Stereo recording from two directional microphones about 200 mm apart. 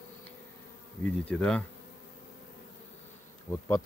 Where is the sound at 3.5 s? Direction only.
15° left (ahead or behind).